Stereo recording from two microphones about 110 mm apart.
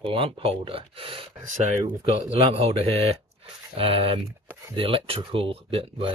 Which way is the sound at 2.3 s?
65° right (ahead or behind).